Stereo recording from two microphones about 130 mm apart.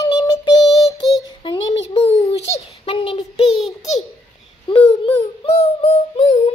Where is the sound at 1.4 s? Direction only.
45° left (ahead or behind).